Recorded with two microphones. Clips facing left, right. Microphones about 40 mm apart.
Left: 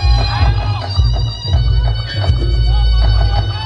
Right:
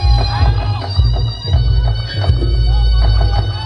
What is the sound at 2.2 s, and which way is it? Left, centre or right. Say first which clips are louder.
Music: right 2 dB; centre.